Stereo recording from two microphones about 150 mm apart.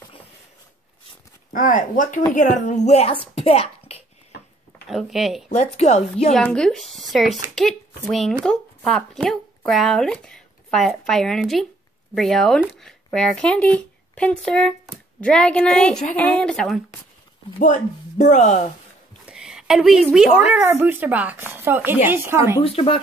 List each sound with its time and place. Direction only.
1.5 s a woman's voice: 60° left (ahead or behind); by 3.2 s 45° left (ahead or behind)
3.3 s a sound: 40° left (ahead or behind)
4.8 s speech: centre (ahead or behind)
5.5 s a woman's voice: 50° left (ahead or behind)
6.3 s speech: 5° left (ahead or behind)
17.6 s a woman's voice: 60° left (ahead or behind)
19.2 s a sound: 5° right (ahead or behind)
20.6 s speech: 15° right (ahead or behind)
22.6 s speech: 40° left (ahead or behind)